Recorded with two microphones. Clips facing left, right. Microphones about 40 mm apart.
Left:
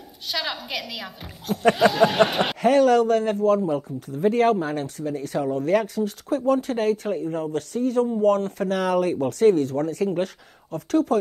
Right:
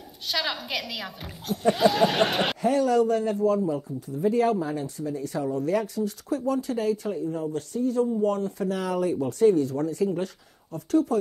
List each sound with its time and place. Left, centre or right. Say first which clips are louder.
0.3 s a woman's voice: even; centre
2.6 s speech: left 6 dB; left